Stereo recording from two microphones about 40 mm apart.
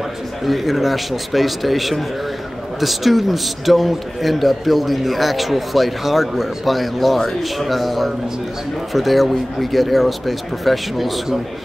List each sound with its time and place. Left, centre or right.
0.5 s a man's voice: centre